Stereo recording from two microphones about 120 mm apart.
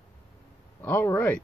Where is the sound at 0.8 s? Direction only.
20° left (ahead or behind).